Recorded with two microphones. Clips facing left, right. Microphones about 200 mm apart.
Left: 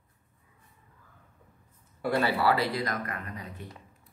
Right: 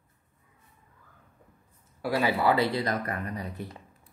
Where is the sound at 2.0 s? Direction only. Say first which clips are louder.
Even; 5° right (ahead or behind).